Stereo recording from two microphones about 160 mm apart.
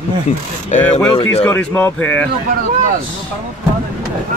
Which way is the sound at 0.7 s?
45° left (ahead or behind).